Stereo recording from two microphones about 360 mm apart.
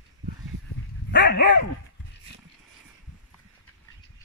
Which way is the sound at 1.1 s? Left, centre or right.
Left.